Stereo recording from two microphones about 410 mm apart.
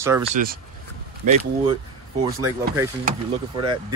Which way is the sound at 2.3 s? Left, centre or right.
Centre.